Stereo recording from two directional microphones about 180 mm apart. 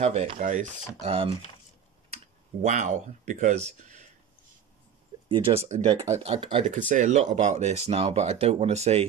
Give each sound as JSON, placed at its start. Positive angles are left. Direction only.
{"t": 0.0, "sound": "speech", "side_deg": -40}
{"t": 2.6, "sound": "speech", "side_deg": -45}
{"t": 5.3, "sound": "speech", "side_deg": -30}